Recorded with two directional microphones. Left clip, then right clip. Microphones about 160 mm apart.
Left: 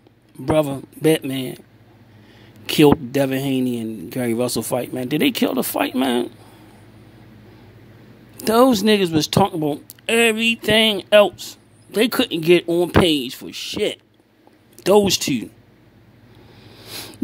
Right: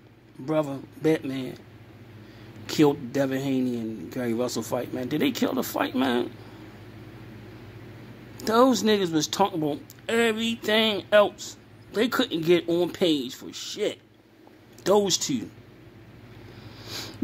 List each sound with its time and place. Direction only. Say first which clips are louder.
0.5 s speech: left 8 dB; 50° left (ahead or behind)
2.6 s speech: left 8 dB; 45° left (ahead or behind)
8.4 s speech: left 5 dB; 45° left (ahead or behind)
16.6 s a sound: left 2 dB; 30° left (ahead or behind)